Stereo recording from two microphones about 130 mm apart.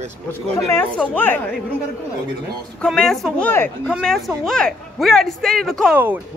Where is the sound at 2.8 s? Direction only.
5° left (ahead or behind).